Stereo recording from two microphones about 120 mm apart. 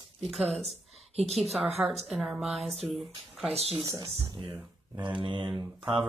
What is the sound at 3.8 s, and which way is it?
Speech, 30° right (ahead or behind).